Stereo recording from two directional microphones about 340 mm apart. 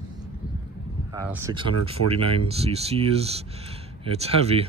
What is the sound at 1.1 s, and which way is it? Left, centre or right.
Speech, centre.